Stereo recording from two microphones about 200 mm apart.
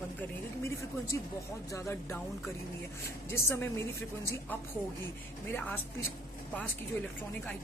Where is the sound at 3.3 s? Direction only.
15° left (ahead or behind).